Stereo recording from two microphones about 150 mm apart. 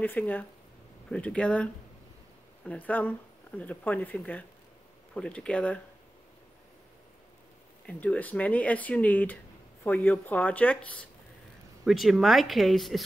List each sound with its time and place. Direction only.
0.0 s speech: 10° left (ahead or behind)
7.8 s speech: 10° left (ahead or behind)